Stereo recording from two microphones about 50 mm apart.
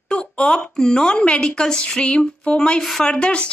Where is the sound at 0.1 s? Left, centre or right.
Centre.